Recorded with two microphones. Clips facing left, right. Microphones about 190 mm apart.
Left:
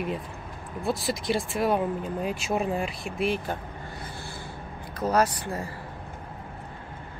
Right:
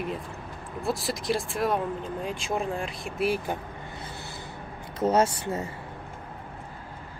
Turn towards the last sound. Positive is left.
turn(degrees=-25)  # may be behind; listen again after turning